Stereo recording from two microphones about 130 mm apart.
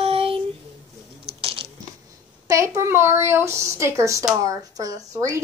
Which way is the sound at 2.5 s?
25° right (ahead or behind).